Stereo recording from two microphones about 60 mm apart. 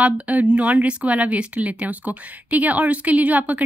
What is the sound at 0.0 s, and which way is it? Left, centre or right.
Speech, right.